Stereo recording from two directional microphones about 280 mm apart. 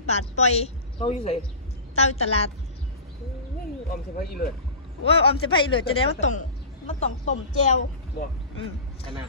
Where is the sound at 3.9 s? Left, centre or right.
Left.